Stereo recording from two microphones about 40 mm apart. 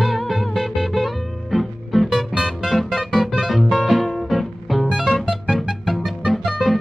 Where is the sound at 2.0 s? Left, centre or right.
Centre.